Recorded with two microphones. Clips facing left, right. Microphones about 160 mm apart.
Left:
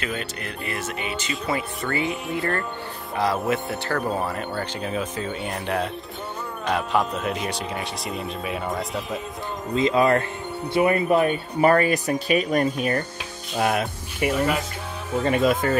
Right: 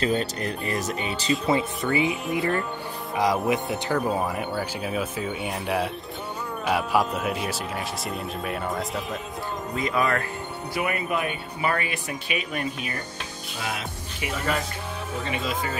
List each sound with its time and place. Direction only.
0.0 s speech: 35° right (ahead or behind)
1.9 s speech: 15° right (ahead or behind); by 9.2 s centre (ahead or behind)
9.8 s speech: 25° left (ahead or behind); by 12.9 s 45° left (ahead or behind)
13.6 s music: 55° left (ahead or behind)
15.2 s speech: 50° left (ahead or behind)